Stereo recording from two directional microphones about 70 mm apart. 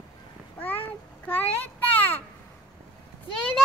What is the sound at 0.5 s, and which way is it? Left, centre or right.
Cat, left.